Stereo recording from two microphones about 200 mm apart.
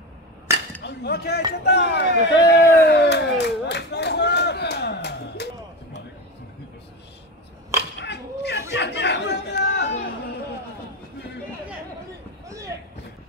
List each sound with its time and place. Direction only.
0.8 s speech: 55° left (ahead or behind)
2.2 s crowd: 60° left (ahead or behind)
8.0 s a sound: 60° left (ahead or behind)
8.7 s chatter: 60° left (ahead or behind)